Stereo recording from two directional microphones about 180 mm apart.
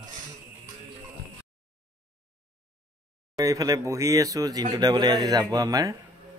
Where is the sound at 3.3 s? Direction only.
20° right (ahead or behind).